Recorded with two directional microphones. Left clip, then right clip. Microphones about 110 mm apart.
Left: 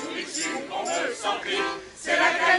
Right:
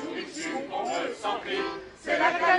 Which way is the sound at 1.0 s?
15° right (ahead or behind).